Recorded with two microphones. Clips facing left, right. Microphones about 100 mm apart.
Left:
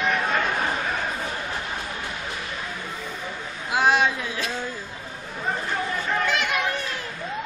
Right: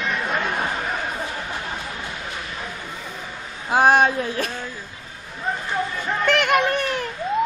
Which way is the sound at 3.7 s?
45° right (ahead or behind).